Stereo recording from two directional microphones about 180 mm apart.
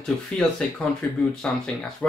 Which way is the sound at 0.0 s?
5° left (ahead or behind).